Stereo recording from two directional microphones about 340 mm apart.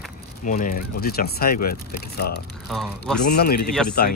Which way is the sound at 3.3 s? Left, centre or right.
Left.